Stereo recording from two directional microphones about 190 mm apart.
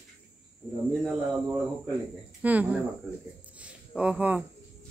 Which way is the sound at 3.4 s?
5° right (ahead or behind).